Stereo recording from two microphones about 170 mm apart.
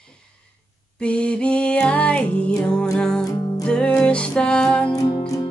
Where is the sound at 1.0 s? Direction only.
5° left (ahead or behind).